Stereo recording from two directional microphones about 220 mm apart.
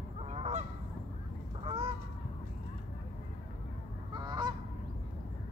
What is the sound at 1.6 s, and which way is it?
Goose, 25° right (ahead or behind).